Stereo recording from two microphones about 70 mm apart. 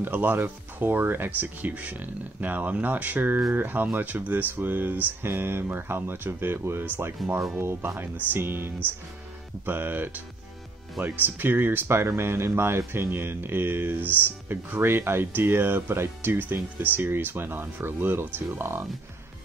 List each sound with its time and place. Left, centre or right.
0.0 s speech: right
7.2 s speech: centre
7.5 s speech: right
11.2 s speech: right